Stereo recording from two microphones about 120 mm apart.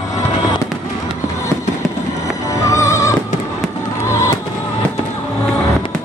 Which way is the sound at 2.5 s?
25° left (ahead or behind).